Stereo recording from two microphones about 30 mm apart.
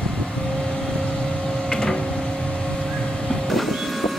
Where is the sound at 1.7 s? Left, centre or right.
Left.